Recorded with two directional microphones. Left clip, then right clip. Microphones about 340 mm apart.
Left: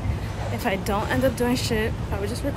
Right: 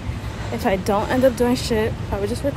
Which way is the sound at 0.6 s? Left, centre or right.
Centre.